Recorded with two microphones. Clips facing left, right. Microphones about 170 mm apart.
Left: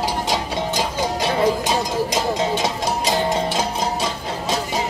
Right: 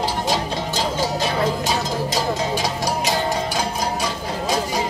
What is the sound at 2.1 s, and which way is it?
Music, 20° left (ahead or behind).